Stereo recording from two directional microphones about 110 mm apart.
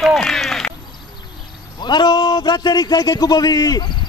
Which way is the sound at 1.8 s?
40° left (ahead or behind).